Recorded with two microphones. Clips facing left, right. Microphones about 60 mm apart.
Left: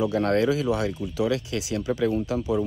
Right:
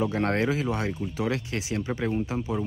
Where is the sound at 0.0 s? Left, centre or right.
Right.